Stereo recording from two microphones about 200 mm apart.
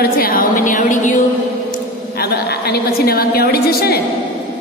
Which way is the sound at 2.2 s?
50° left (ahead or behind).